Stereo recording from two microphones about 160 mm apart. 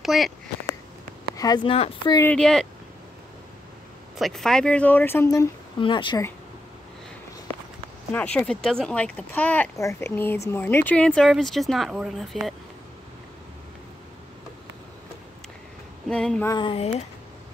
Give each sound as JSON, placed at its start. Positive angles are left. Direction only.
{"t": 0.0, "sound": "speech", "side_deg": 0}
{"t": 1.3, "sound": "speech", "side_deg": 25}
{"t": 2.3, "sound": "a sound", "side_deg": 5}
{"t": 4.2, "sound": "speech", "side_deg": 0}
{"t": 5.8, "sound": "speech", "side_deg": 30}
{"t": 8.1, "sound": "speech", "side_deg": 10}
{"t": 16.1, "sound": "a sound", "side_deg": 5}
{"t": 16.4, "sound": "speech", "side_deg": 30}